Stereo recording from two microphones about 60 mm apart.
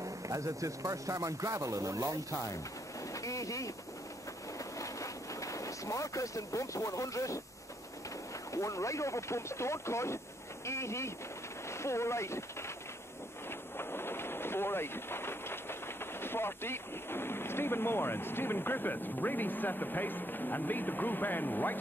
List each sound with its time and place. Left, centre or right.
0.0 s speech: right
3.1 s speech: left
4.6 s boat: left
8.5 s speech: left
13.5 s train: left
16.2 s speech: left